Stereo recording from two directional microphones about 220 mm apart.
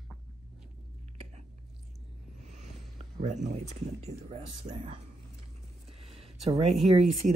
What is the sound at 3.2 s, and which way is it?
Speech, 35° right (ahead or behind).